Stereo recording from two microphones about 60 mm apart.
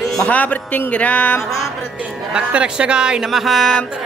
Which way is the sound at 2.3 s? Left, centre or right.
Centre.